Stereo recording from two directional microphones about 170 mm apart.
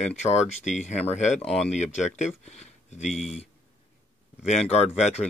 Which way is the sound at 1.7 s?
45° left (ahead or behind).